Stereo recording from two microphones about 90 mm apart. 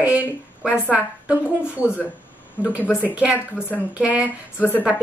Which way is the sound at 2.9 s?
25° left (ahead or behind).